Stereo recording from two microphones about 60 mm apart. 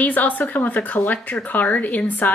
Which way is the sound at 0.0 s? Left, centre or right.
Left.